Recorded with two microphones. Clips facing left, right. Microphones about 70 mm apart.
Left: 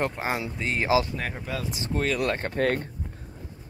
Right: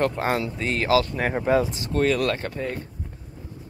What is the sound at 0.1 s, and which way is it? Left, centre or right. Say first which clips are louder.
Speech: right 5 dB; centre.